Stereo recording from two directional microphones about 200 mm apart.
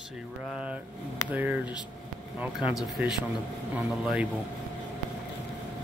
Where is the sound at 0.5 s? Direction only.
5° right (ahead or behind).